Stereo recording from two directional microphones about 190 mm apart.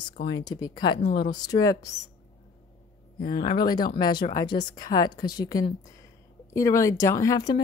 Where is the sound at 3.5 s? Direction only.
20° left (ahead or behind).